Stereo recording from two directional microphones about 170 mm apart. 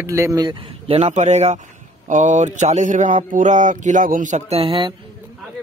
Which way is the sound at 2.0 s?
45° right (ahead or behind).